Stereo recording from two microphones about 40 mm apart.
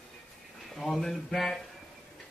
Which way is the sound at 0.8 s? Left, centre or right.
Centre.